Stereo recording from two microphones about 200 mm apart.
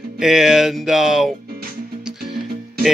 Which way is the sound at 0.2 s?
Centre (ahead or behind).